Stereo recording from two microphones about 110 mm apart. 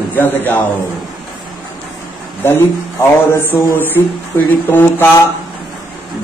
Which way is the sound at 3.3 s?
20° left (ahead or behind).